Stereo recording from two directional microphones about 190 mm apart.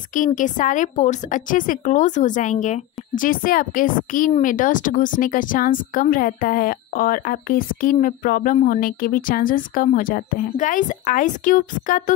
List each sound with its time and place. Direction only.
0.1 s speech: 45° left (ahead or behind)